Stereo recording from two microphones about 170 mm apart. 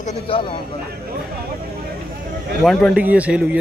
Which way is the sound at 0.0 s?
40° left (ahead or behind).